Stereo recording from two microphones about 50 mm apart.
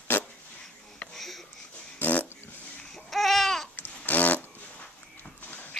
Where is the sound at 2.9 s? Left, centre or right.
Centre.